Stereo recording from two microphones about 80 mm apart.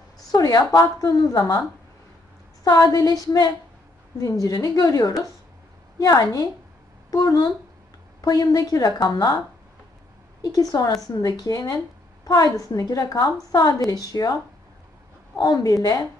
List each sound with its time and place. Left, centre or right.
0.3 s a woman's voice: left
2.6 s a woman's voice: left
10.4 s a woman's voice: left